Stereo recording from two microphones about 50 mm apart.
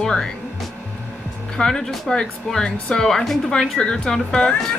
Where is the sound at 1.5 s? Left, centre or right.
Centre.